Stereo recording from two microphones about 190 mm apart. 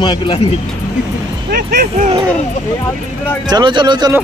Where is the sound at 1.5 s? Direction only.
50° right (ahead or behind).